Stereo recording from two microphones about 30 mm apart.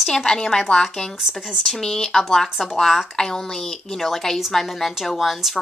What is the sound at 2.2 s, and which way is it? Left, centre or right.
A woman's voice, centre.